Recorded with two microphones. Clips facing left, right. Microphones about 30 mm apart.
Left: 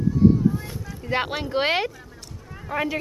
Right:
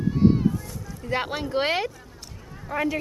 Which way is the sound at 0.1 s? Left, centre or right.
Right.